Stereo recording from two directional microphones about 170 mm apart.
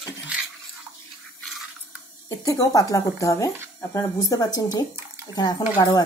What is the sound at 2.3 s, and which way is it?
Speech, 20° left (ahead or behind).